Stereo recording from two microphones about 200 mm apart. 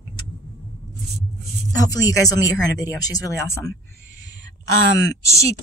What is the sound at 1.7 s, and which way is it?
Speech, 20° left (ahead or behind).